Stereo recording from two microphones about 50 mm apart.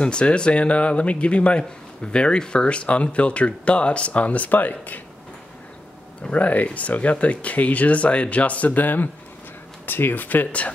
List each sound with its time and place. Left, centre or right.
0.0 s speech: left
6.3 s speech: left